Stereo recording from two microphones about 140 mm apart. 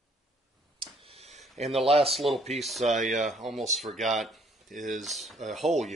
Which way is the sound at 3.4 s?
Centre (ahead or behind).